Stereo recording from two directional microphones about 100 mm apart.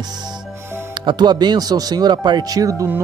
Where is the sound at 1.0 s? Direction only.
45° right (ahead or behind).